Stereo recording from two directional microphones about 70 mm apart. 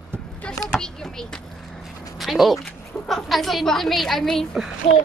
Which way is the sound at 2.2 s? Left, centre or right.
Centre.